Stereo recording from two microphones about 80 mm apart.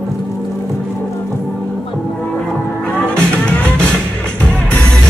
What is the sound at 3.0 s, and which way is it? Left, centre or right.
Music, centre.